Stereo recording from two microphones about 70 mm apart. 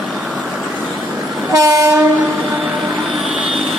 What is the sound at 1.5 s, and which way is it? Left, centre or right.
Train, right.